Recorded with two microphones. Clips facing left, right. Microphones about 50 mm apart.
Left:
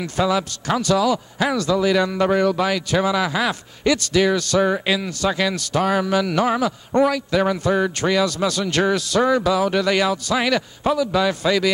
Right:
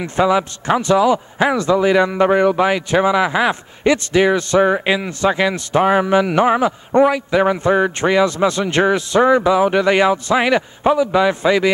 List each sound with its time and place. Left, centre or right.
0.0 s a man's voice: right